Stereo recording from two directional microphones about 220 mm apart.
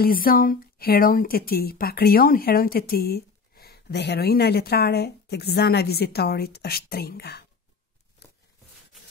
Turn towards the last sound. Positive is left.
turn(degrees=45)  # may be behind; listen again after turning